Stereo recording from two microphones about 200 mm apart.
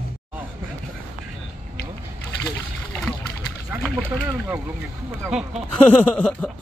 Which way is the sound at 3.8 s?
5° left (ahead or behind).